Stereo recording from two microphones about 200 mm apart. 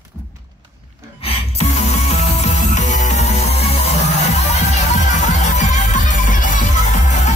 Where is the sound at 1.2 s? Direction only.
30° left (ahead or behind).